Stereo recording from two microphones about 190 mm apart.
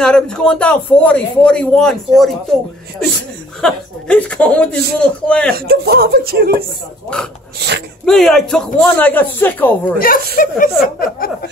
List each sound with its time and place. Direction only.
0.0 s a man's voice: 5° left (ahead or behind)
3.6 s a man's voice: 5° left (ahead or behind)
5.5 s speech: 55° right (ahead or behind)
7.5 s speech: 60° right (ahead or behind)
8.0 s a man's voice: centre (ahead or behind)
9.9 s a woman's voice: 50° left (ahead or behind)